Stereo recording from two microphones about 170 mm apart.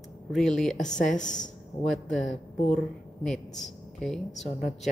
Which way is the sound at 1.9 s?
Centre (ahead or behind).